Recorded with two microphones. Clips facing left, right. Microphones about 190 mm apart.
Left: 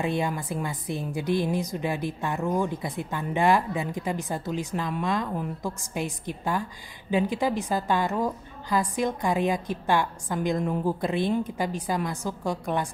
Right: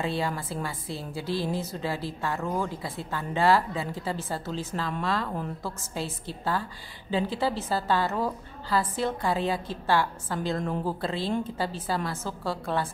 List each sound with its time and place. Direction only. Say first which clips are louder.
0.0 s a woman's voice: left 2 dB; 20° left (ahead or behind)